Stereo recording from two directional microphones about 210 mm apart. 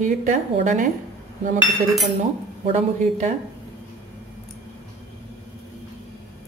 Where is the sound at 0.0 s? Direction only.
35° right (ahead or behind).